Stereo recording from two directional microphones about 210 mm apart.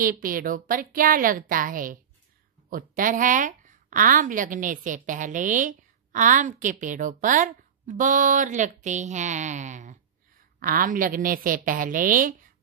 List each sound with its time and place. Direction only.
0.0 s a woman's voice: 40° right (ahead or behind)